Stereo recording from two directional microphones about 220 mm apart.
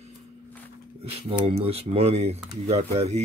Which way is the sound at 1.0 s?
25° right (ahead or behind).